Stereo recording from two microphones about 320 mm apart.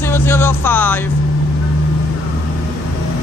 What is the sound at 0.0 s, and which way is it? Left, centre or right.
Speech, centre.